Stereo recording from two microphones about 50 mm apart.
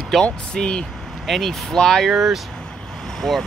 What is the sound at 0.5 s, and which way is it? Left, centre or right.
Speech, centre.